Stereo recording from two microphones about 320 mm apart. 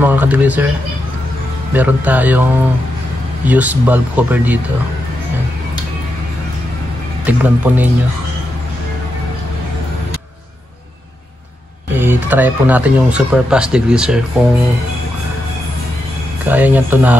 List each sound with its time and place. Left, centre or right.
0.0 s speech: centre
1.7 s speech: centre
3.4 s speech: centre
7.2 s speech: centre
11.9 s speech: centre
16.4 s speech: centre